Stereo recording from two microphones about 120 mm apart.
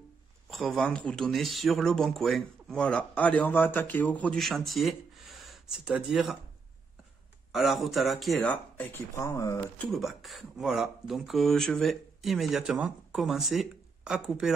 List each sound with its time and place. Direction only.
0.5 s speech: centre (ahead or behind)
4.4 s speech: centre (ahead or behind)
7.5 s speech: centre (ahead or behind)
9.1 s speech: 25° left (ahead or behind)
9.8 s speech: centre (ahead or behind)